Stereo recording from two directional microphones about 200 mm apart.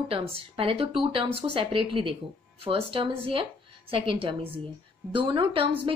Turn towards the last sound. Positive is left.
turn(degrees=-25)  # may be behind; listen again after turning